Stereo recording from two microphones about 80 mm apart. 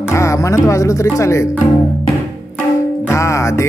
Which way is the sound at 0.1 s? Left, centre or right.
Left.